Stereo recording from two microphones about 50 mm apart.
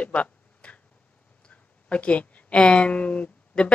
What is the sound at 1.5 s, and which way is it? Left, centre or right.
Speech, left.